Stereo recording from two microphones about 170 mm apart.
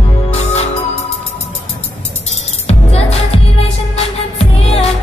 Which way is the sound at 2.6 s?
35° left (ahead or behind).